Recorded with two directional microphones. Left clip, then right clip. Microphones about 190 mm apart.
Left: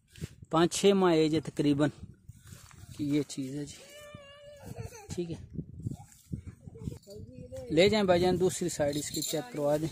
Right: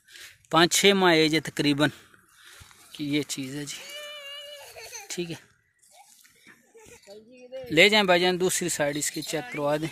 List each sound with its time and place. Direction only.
0.1 s speech: centre (ahead or behind)
3.0 s speech: 5° left (ahead or behind)
4.2 s a sound: 45° left (ahead or behind)
5.0 s a child's voice: centre (ahead or behind)
7.6 s speech: centre (ahead or behind)